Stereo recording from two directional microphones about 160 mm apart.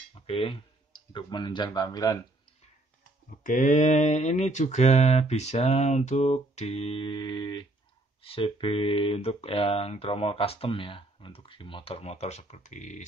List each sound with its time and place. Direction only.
0.1 s speech: 40° left (ahead or behind)
3.4 s speech: 55° left (ahead or behind)